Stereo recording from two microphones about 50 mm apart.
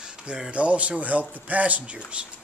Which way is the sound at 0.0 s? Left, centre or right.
Centre.